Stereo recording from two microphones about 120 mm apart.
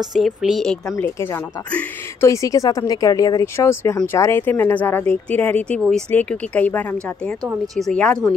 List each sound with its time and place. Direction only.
0.1 s speech: 5° right (ahead or behind)
0.8 s speech: 25° left (ahead or behind); by 8.4 s 10° left (ahead or behind)